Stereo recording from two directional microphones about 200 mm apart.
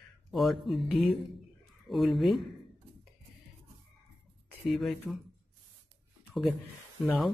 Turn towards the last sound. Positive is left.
turn(degrees=0)  # may be behind; listen again after turning